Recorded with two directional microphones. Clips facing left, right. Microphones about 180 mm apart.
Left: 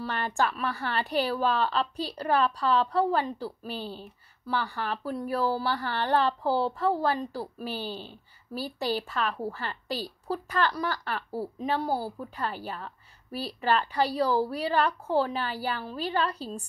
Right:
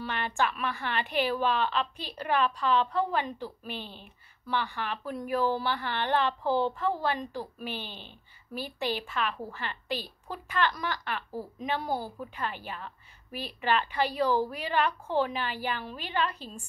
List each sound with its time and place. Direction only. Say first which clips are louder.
0.0 s speech: left 2 dB; 40° left (ahead or behind)